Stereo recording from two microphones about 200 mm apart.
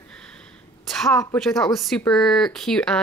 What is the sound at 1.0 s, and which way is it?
Speech, centre (ahead or behind).